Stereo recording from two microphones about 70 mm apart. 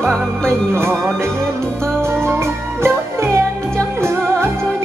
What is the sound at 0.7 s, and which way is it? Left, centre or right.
Music, right.